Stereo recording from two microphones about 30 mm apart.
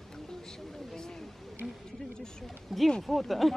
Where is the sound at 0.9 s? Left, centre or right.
Left.